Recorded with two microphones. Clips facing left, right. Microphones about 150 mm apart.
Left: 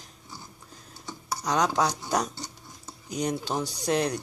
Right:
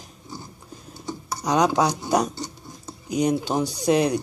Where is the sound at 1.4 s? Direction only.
5° right (ahead or behind).